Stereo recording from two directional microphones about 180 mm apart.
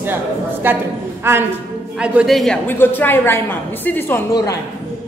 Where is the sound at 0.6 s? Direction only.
10° right (ahead or behind).